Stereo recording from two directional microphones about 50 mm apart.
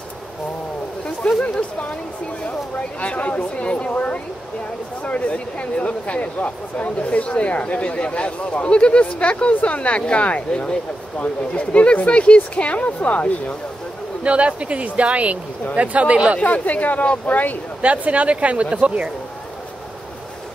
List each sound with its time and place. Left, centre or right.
1.2 s speech: centre
3.0 s speech: left
14.2 s speech: right
16.4 s speech: left
17.8 s speech: right